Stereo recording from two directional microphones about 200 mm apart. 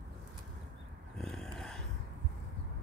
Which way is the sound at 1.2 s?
Centre (ahead or behind).